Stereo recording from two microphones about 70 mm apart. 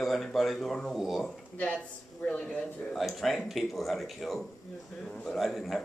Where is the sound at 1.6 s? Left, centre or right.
Centre.